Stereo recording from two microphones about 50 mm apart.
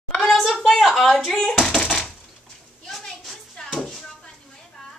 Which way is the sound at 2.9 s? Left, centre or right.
Centre.